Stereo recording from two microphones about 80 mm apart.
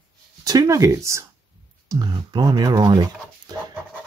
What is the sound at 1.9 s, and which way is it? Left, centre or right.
Speech, right.